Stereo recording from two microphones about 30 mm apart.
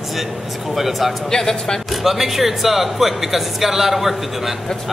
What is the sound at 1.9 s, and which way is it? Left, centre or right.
Speech, centre.